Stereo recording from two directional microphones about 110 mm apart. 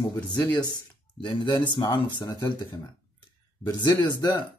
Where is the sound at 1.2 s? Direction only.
45° left (ahead or behind).